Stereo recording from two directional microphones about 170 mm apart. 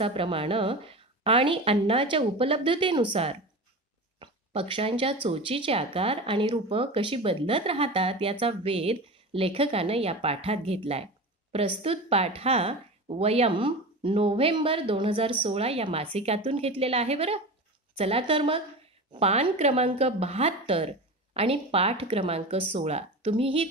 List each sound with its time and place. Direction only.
0.0 s speech: 30° right (ahead or behind)